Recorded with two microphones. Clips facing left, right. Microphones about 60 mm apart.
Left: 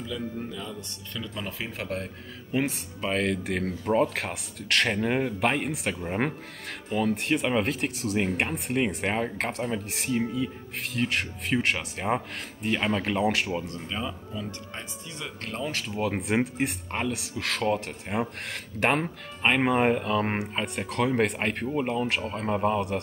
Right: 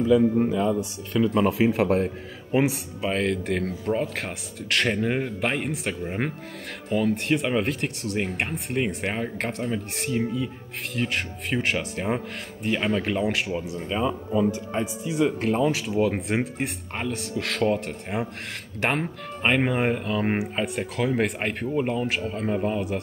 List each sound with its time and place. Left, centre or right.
0.5 s speech: right
2.7 s speech: centre